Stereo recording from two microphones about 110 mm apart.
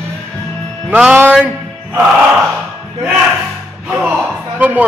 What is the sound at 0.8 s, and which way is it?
Speech, 15° right (ahead or behind).